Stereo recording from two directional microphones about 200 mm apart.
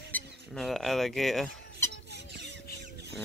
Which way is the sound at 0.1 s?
Centre (ahead or behind).